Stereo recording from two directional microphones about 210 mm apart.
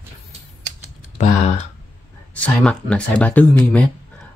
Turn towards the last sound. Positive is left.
turn(degrees=5)  # may be behind; listen again after turning